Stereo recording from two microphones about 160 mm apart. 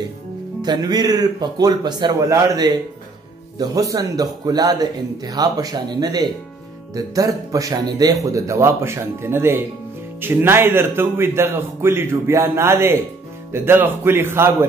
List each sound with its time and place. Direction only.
0.6 s speech: 25° right (ahead or behind)